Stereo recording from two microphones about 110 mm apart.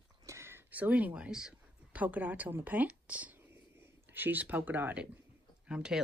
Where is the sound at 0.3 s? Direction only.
25° right (ahead or behind).